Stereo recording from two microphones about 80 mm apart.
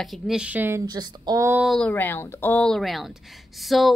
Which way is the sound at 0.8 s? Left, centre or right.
Right.